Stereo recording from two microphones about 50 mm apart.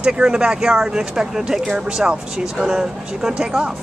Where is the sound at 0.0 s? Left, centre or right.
Centre.